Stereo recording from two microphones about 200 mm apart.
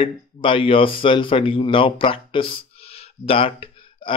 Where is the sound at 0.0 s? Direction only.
25° left (ahead or behind).